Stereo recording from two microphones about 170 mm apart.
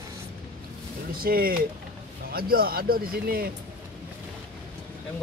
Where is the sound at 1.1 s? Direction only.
60° right (ahead or behind).